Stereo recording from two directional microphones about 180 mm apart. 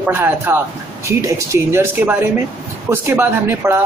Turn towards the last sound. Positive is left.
turn(degrees=-10)  # may be behind; listen again after turning